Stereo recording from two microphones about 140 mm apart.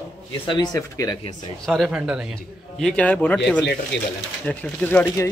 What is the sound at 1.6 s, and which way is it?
Speech, centre (ahead or behind).